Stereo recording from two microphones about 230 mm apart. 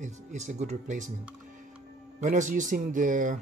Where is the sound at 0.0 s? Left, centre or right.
Right.